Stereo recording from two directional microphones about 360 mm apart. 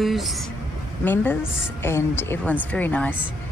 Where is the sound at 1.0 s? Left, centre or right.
Centre.